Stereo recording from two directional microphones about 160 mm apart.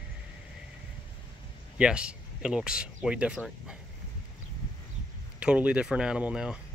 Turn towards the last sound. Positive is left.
turn(degrees=-5)  # may be behind; listen again after turning